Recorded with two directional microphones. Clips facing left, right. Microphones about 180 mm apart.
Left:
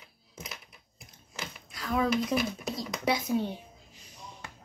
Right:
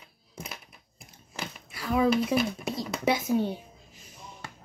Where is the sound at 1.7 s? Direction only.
5° right (ahead or behind).